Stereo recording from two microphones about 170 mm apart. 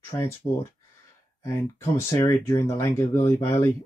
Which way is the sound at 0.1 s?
15° left (ahead or behind).